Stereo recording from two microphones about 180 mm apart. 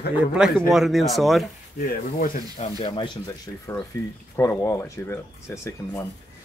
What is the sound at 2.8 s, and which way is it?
Speech, 25° left (ahead or behind).